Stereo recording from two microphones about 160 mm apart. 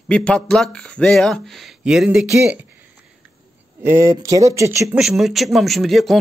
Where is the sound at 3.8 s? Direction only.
20° right (ahead or behind).